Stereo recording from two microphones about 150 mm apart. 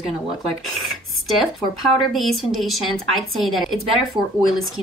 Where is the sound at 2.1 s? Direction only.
Centre (ahead or behind).